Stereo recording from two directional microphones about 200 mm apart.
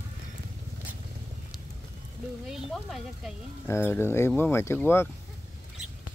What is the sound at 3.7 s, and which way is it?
Speech, 10° left (ahead or behind).